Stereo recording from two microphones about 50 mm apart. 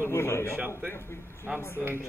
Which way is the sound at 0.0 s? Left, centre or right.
Left.